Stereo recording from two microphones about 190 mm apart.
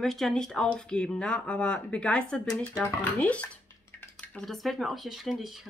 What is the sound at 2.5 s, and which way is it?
Speech, 20° left (ahead or behind).